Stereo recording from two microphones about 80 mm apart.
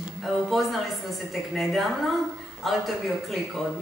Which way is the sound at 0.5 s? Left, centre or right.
Centre.